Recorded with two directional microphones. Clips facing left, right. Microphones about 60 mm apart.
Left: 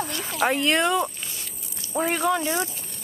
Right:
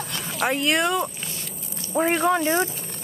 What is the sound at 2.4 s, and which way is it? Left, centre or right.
Speech, right.